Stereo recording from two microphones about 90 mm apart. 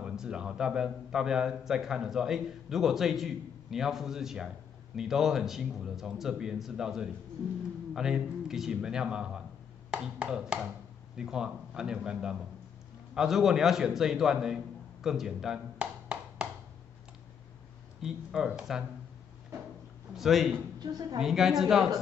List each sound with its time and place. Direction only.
0.0 s a man's voice: 10° right (ahead or behind)
15.0 s a sound: 5° right (ahead or behind)
18.0 s speech: 5° right (ahead or behind)
20.2 s a man's voice: centre (ahead or behind)
20.8 s a woman's voice: 50° right (ahead or behind)
21.2 s a man's voice: 5° right (ahead or behind)